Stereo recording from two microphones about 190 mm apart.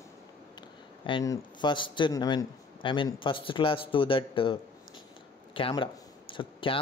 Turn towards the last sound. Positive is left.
turn(degrees=25)  # may be behind; listen again after turning